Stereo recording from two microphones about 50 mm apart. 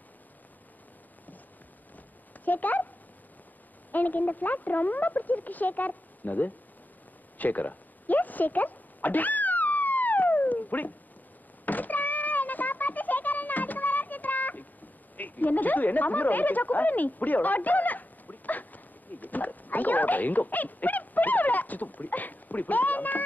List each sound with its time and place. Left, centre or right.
2.4 s speech: left
3.9 s speech: left
7.3 s a sound: left
15.1 s speech: left